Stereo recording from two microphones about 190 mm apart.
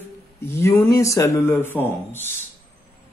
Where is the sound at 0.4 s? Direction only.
15° left (ahead or behind).